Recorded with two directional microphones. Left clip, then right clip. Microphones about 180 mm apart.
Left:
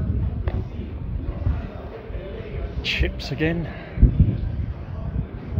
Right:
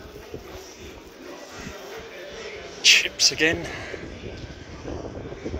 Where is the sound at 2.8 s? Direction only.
Centre (ahead or behind).